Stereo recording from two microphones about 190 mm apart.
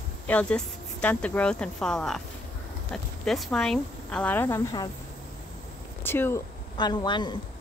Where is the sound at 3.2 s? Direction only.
Centre (ahead or behind); by 4.9 s 20° left (ahead or behind).